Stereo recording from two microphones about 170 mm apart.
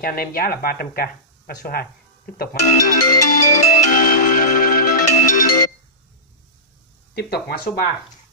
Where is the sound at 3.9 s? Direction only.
60° left (ahead or behind).